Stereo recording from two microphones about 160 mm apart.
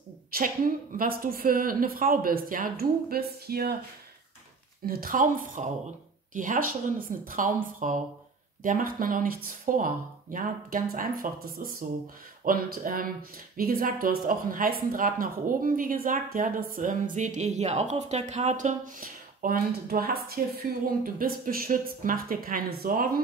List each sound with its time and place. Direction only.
0.3 s speech: 65° right (ahead or behind)
4.8 s speech: 65° right (ahead or behind)